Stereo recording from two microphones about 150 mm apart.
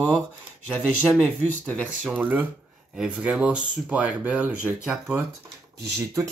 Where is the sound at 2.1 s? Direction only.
10° right (ahead or behind).